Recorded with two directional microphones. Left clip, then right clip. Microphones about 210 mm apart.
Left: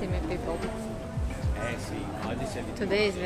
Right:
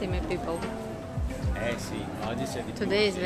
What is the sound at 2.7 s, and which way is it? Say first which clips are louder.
Speech: right 1 dB; 10° right (ahead or behind).